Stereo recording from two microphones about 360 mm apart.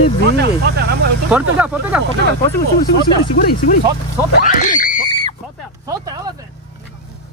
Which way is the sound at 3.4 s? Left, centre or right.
Left.